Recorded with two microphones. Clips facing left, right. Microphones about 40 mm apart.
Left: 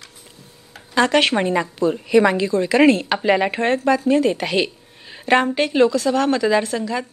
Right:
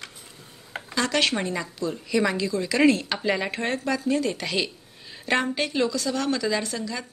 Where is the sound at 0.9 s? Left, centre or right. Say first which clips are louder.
Left 8 dB; left.